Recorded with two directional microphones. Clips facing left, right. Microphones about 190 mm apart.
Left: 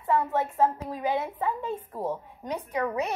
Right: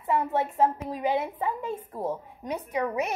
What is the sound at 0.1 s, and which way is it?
A woman's voice, 15° right (ahead or behind).